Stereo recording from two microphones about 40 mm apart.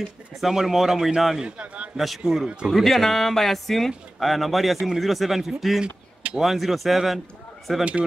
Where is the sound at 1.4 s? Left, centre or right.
Right.